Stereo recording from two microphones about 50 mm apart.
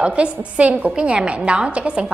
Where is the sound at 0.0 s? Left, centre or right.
Right.